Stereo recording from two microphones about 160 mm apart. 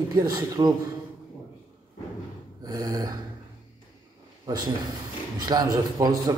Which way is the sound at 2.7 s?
25° right (ahead or behind).